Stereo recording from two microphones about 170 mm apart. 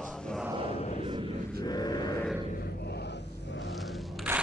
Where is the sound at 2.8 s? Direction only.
80° left.